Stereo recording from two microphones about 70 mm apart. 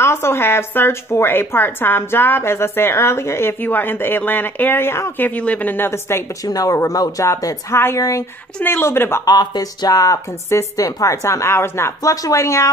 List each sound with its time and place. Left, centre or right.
0.0 s a woman's voice: left
3.6 s speech: left
5.2 s speech: left
5.9 s a woman's voice: left
6.4 s speech: left
7.7 s a woman's voice: left
9.2 s a woman's voice: left
12.1 s a woman's voice: left